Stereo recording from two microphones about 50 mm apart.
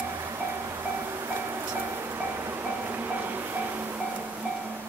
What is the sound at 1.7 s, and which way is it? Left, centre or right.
Music, right.